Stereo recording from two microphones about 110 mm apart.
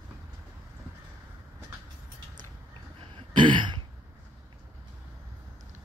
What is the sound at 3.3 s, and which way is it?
Throat clearing, 45° right (ahead or behind).